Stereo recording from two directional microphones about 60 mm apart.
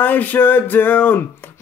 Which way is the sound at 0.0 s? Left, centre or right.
Left.